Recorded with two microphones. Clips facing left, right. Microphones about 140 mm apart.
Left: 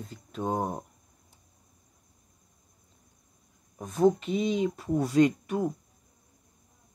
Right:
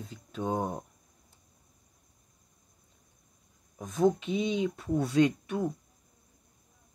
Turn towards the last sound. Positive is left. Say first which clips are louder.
# left 2 dB
turn(degrees=0)  # may be behind; listen again after turning